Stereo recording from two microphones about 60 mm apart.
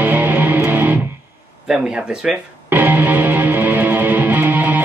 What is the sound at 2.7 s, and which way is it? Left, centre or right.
Music, right.